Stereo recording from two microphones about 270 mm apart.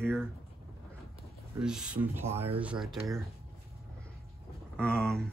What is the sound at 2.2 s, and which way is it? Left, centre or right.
Speech, right.